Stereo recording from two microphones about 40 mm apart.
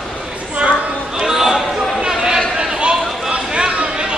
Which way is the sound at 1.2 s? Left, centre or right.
Centre.